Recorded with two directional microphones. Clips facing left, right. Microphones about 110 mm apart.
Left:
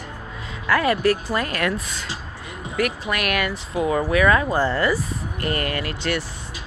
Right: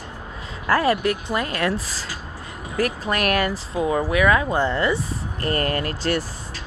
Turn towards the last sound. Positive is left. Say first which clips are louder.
# right 2 dB
turn(degrees=-40)  # may be behind; listen again after turning